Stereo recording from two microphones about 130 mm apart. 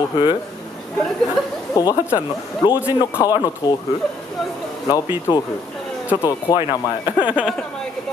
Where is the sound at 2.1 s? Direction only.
35° left (ahead or behind).